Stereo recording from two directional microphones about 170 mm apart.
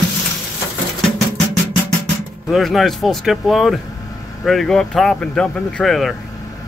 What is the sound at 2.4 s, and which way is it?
Speech, centre (ahead or behind).